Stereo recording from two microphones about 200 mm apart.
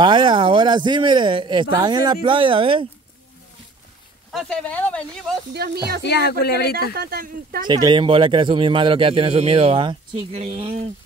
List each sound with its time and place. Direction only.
0.0 s a man's voice: 25° right (ahead or behind)
4.3 s speech: 5° left (ahead or behind)
5.6 s speech: 55° right (ahead or behind)
6.0 s speech: 55° left (ahead or behind)
7.0 s speech: 50° right (ahead or behind)
7.6 s a man's voice: 20° right (ahead or behind)